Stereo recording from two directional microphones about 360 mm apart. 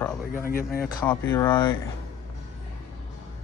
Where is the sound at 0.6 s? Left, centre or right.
Centre.